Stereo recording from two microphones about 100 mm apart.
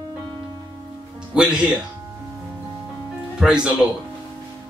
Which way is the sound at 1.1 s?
10° right (ahead or behind).